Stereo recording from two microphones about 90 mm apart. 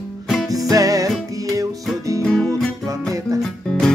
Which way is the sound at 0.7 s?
40° right (ahead or behind).